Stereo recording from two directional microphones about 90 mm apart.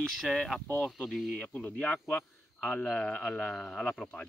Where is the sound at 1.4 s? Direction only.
15° left (ahead or behind).